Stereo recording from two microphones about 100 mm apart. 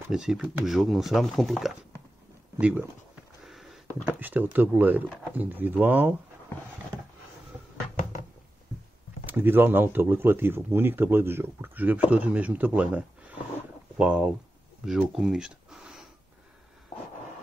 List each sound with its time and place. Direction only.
0.1 s speech: 5° right (ahead or behind)
2.6 s speech: 15° right (ahead or behind)
3.4 s a sound: centre (ahead or behind)
4.0 s speech: 15° right (ahead or behind)
9.2 s speech: 20° right (ahead or behind)
14.9 s a sound: 5° right (ahead or behind)